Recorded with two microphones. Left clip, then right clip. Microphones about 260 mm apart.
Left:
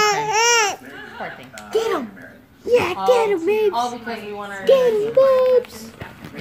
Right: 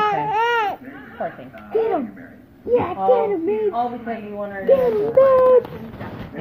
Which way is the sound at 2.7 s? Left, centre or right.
Left.